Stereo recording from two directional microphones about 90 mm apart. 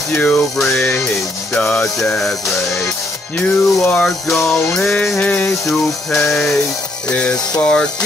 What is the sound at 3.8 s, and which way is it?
Music, 10° left (ahead or behind).